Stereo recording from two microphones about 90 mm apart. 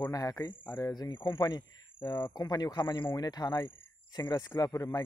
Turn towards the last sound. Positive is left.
turn(degrees=40)  # may be behind; listen again after turning